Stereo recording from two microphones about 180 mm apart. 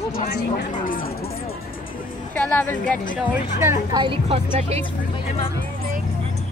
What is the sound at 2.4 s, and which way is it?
Speech, 10° left (ahead or behind).